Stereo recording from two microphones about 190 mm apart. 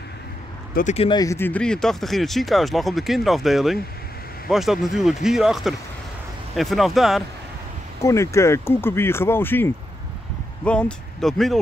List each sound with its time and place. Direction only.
0.7 s speech: 35° left (ahead or behind)
1.2 s speech: 15° left (ahead or behind)
8.0 s speech: 15° left (ahead or behind)